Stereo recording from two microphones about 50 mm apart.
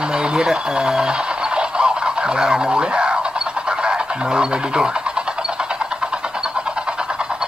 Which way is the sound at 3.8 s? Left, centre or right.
Centre.